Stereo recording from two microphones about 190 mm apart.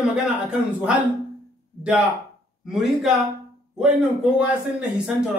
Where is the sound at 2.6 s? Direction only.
5° right (ahead or behind).